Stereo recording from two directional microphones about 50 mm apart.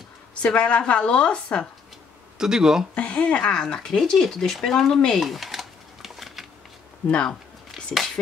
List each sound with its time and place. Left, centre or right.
0.3 s a woman's voice: left
2.3 s speech: centre
2.9 s speech: left; by 6.4 s centre
7.7 s a sound: centre